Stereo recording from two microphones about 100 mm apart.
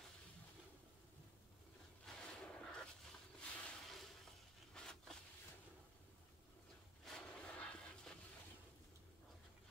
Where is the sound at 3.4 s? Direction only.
10° left (ahead or behind).